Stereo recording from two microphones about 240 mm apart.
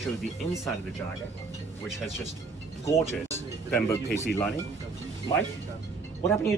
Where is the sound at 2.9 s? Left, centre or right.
Centre.